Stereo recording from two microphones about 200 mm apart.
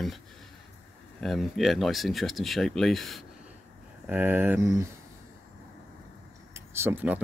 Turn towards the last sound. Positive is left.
turn(degrees=-10)  # may be behind; listen again after turning